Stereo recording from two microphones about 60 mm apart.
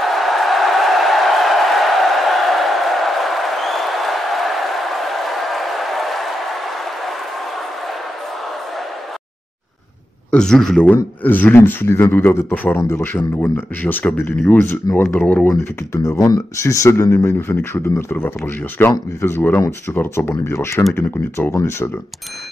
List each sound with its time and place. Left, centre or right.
0.0 s a sound: centre
10.3 s speech: centre
11.2 s speech: left
15.1 s speech: left
15.9 s speech: left
16.2 s speech: left
19.2 s speech: left
20.9 s speech: left
21.5 s speech: left